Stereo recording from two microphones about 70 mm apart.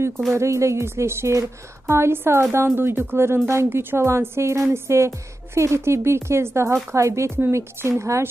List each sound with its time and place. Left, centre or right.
0.3 s speech: right